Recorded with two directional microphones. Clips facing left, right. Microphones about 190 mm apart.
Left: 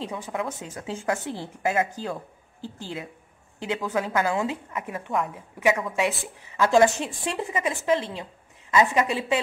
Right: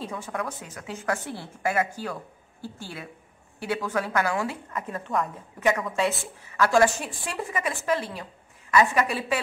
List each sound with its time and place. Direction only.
0.0 s a woman's voice: 15° left (ahead or behind)
5.9 s speech: 15° left (ahead or behind)